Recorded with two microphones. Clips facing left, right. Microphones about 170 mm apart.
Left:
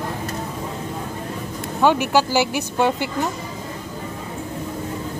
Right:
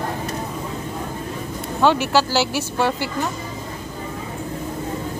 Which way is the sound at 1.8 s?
15° left (ahead or behind).